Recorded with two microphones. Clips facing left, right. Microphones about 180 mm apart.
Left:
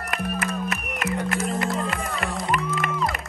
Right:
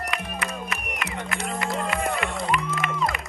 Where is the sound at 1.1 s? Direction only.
Centre (ahead or behind).